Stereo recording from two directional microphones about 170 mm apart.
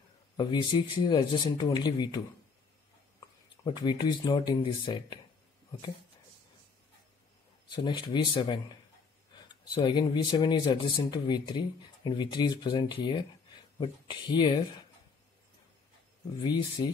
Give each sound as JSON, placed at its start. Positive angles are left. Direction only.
{"t": 0.4, "sound": "a man's voice", "side_deg": 25}
{"t": 3.6, "sound": "a man's voice", "side_deg": 25}
{"t": 7.7, "sound": "a man's voice", "side_deg": 25}
{"t": 16.3, "sound": "a man's voice", "side_deg": 25}